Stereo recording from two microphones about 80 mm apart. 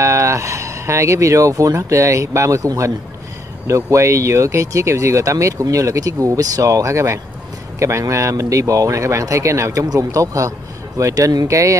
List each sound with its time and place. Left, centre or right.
0.0 s speech: right